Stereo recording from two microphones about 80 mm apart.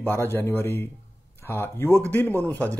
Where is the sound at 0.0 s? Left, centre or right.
Left.